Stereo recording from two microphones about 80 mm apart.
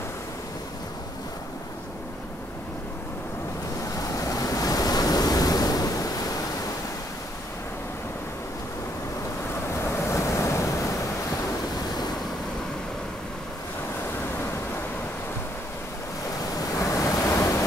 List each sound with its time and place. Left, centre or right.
4.1 s waves: left
9.8 s waves: left
16.7 s waves: left